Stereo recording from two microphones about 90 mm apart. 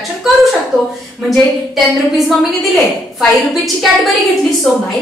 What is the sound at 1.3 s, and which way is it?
A woman's voice, centre (ahead or behind).